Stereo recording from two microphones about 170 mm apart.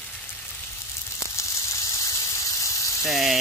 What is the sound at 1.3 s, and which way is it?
Squeal, 15° left (ahead or behind).